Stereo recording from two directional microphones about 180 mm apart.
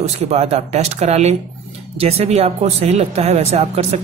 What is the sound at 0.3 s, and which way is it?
Speech, 35° right (ahead or behind).